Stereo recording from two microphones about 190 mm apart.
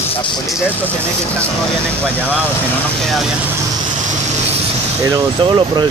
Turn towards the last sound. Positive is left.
turn(degrees=-25)  # may be behind; listen again after turning